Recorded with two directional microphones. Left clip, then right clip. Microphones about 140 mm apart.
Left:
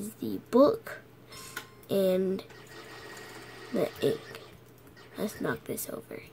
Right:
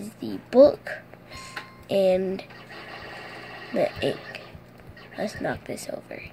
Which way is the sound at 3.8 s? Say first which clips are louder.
Right 4 dB; 45° left (ahead or behind).